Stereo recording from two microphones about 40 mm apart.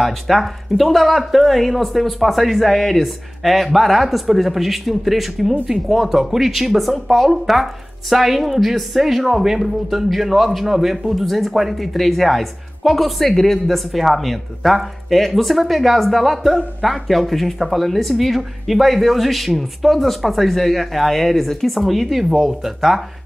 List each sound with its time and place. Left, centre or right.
0.0 s speech: centre